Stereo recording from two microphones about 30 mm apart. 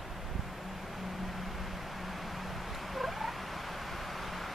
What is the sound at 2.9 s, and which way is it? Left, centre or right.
Rodents, centre.